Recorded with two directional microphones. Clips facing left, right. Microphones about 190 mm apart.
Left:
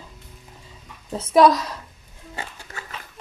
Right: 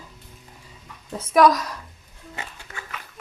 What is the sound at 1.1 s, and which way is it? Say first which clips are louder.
Speech: left 2 dB; 25° left (ahead or behind).